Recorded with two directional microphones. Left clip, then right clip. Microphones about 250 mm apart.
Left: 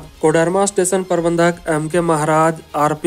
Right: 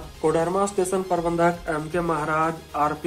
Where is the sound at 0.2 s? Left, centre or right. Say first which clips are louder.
Left 7 dB; left.